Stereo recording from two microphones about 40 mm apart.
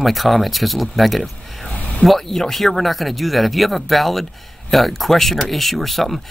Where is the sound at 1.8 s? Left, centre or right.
Left.